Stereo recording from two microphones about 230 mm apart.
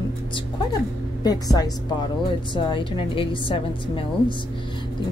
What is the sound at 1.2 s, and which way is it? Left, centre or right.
A woman's voice, centre.